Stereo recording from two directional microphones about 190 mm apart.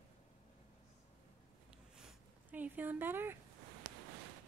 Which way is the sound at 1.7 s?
5° right (ahead or behind).